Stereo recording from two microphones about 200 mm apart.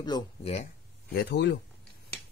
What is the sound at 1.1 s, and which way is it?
Speech, 60° left (ahead or behind).